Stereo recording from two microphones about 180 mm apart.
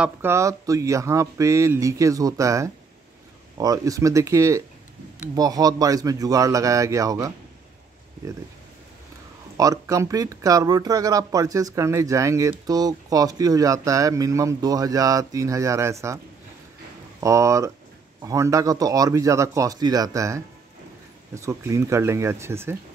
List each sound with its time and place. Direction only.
0.0 s speech: 15° right (ahead or behind)
9.6 s speech: 20° right (ahead or behind)
17.2 s speech: 15° right (ahead or behind)